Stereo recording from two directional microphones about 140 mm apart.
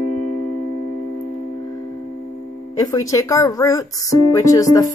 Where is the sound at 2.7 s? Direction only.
25° left (ahead or behind).